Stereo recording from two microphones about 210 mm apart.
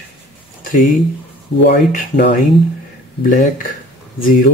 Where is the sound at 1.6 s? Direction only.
45° left (ahead or behind).